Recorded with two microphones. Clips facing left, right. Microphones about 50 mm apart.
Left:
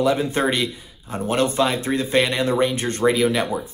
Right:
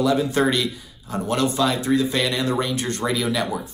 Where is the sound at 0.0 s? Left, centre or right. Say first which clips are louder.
Even; left.